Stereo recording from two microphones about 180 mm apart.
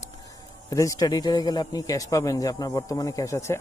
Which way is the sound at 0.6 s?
20° left (ahead or behind).